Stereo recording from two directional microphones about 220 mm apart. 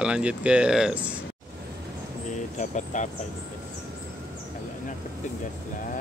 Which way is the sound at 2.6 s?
35° left (ahead or behind).